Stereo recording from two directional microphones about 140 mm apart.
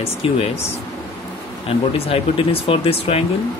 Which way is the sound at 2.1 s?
40° left (ahead or behind).